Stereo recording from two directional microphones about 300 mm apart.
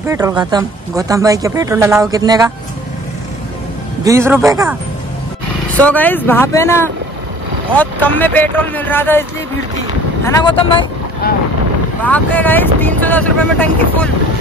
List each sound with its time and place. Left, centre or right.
0.0 s speech: centre
4.0 s speech: centre
5.7 s speech: centre
10.2 s speech: centre
11.2 s speech: left
12.0 s speech: centre